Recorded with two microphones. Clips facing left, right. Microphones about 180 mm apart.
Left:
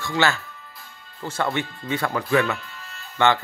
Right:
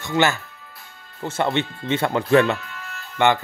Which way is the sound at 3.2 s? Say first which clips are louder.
Right 1 dB; 15° right (ahead or behind).